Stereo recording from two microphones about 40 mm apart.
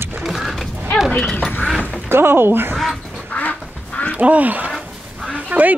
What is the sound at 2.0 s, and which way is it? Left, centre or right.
Speech, right.